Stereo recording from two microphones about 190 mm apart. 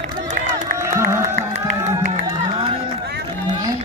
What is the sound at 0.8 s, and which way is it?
Music, 15° right (ahead or behind).